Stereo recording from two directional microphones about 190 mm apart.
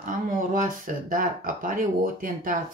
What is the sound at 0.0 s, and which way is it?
Speech, 45° right (ahead or behind).